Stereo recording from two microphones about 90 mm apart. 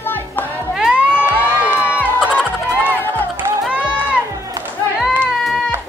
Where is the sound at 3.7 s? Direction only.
15° right (ahead or behind).